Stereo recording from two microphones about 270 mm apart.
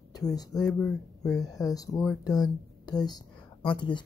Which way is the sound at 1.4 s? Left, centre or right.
Centre.